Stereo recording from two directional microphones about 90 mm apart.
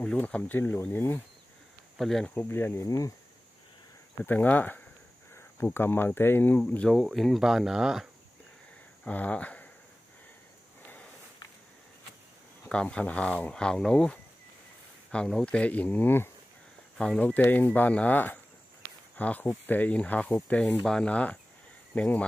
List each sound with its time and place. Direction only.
0.0 s speech: 10° left (ahead or behind)
2.0 s speech: 5° left (ahead or behind)
2.3 s speech: 25° left (ahead or behind)
4.2 s speech: 20° left (ahead or behind)
6.9 s speech: centre (ahead or behind)
9.0 s speech: 15° left (ahead or behind)
12.6 s speech: 10° left (ahead or behind)